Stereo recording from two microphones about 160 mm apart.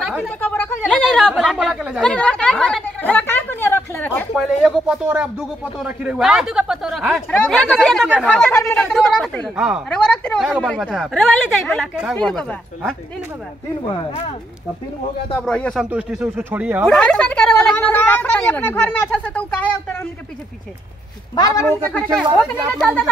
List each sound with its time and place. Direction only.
0.0 s speech: 5° right (ahead or behind)
0.4 s speech: 10° left (ahead or behind); by 2.0 s 5° right (ahead or behind)
2.0 s a woman's voice: 5° left (ahead or behind)
4.4 s speech: centre (ahead or behind); by 8.8 s 15° left (ahead or behind)
8.8 s speech: centre (ahead or behind)
9.6 s speech: 5° right (ahead or behind)
9.8 s speech: 5° left (ahead or behind)
13.8 s speech: 35° left (ahead or behind)
15.3 s speech: 5° left (ahead or behind)
15.9 s speech: 10° right (ahead or behind)
16.8 s a sound: 5° left (ahead or behind)
21.4 s speech: 20° left (ahead or behind)
22.2 s speech: 5° right (ahead or behind)